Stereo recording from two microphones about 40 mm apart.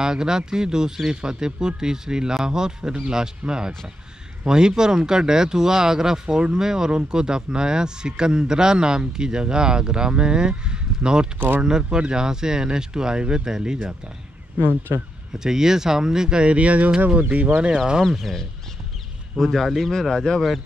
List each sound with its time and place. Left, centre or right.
0.0 s speech: centre
11.3 s speech: right
11.6 s speech: centre
15.3 s speech: centre; by 16.9 s right
17.6 s speech: centre
18.0 s speech: centre